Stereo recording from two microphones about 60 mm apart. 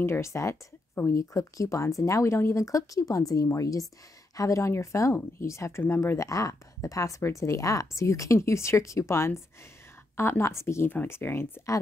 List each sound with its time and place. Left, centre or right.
0.0 s speech: left
4.4 s speech: left
5.8 s speech: left
6.1 s speech: left